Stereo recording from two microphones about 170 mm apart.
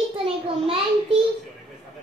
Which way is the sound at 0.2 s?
30° right (ahead or behind).